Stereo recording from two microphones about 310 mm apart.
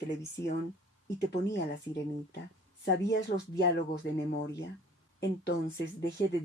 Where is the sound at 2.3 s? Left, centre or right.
Left.